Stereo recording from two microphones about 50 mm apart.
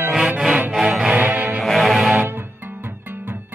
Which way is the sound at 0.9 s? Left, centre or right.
Right.